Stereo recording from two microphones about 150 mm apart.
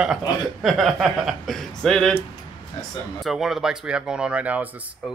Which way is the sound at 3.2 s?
Centre (ahead or behind).